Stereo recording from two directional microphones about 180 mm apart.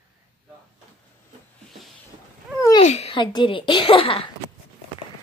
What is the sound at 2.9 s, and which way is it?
Speech, 35° left (ahead or behind).